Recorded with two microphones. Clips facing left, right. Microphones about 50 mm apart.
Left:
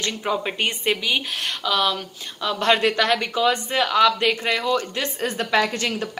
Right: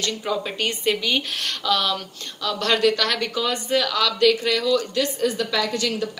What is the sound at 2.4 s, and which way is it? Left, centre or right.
Speech, left.